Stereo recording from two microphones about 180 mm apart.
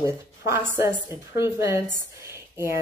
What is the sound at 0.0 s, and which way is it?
A woman's voice, 15° right (ahead or behind).